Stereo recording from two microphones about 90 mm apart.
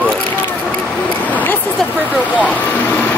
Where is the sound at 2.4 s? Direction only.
20° left (ahead or behind).